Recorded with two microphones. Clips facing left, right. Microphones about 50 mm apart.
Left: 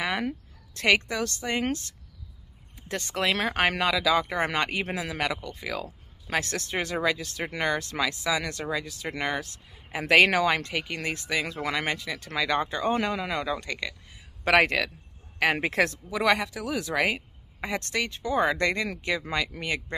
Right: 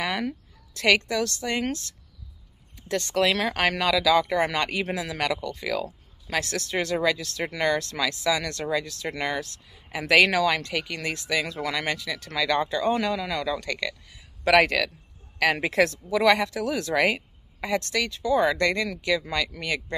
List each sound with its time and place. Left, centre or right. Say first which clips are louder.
0.0 s speech: right 1 dB; centre
5.2 s speech: right 3 dB; centre
6.2 s speech: right 1 dB; left; by 17.2 s centre
17.6 s speech: right 3 dB; left